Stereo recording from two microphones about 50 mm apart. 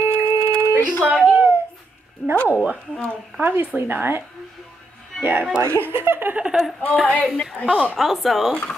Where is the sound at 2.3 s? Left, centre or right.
Left.